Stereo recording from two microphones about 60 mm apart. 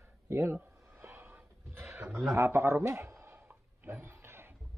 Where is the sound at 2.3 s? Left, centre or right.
Right.